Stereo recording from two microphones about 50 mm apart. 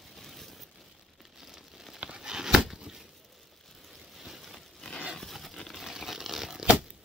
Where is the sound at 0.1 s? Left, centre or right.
Centre.